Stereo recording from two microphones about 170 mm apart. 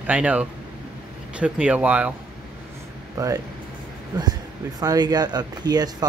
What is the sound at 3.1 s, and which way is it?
Speech, 20° right (ahead or behind).